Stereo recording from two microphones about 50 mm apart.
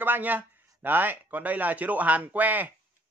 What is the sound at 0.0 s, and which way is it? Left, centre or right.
Speech, right.